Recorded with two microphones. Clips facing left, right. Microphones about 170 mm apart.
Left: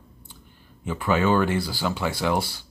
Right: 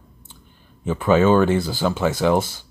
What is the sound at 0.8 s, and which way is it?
Speech, 25° right (ahead or behind).